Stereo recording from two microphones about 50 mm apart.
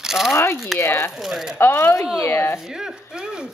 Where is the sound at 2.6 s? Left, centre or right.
Centre.